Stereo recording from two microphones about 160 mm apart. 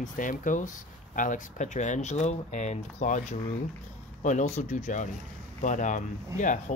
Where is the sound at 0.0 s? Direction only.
55° left (ahead or behind).